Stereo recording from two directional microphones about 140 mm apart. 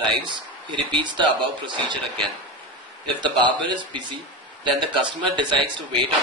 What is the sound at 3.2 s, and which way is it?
A man's voice, 35° right (ahead or behind).